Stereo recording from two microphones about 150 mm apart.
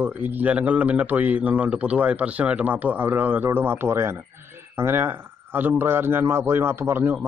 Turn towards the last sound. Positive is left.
turn(degrees=-15)  # may be behind; listen again after turning